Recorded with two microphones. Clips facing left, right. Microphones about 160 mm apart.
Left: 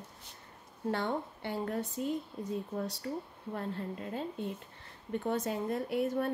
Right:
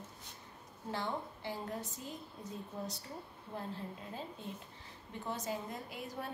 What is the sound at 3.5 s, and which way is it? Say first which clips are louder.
A woman's voice: left 5 dB; 65° left (ahead or behind).